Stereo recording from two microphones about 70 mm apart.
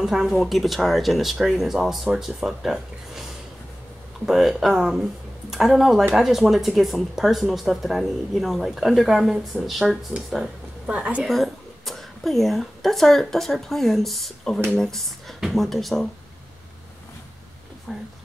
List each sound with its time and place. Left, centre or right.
0.0 s speech: centre
4.3 s speech: centre
10.9 s a woman's voice: centre
11.2 s a woman's voice: centre
17.9 s speech: centre